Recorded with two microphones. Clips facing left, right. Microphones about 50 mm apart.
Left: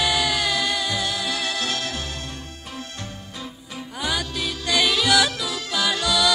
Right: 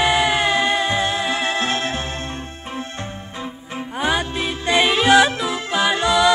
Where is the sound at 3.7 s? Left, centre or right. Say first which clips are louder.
Right 6 dB; right.